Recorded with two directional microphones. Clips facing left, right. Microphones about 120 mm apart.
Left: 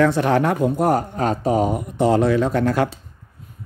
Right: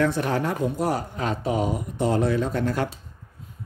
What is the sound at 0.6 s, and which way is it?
Speech, 50° left (ahead or behind).